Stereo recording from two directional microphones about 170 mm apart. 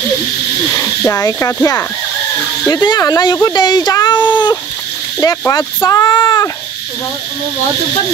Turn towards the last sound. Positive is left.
turn(degrees=15)  # may be behind; listen again after turning